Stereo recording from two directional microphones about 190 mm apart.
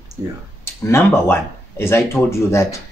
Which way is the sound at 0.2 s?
15° right (ahead or behind).